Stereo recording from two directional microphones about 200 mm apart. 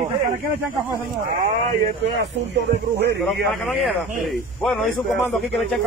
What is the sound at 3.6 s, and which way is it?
Speech, centre (ahead or behind).